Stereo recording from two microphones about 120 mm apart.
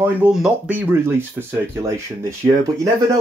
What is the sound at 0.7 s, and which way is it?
Speech, 15° right (ahead or behind).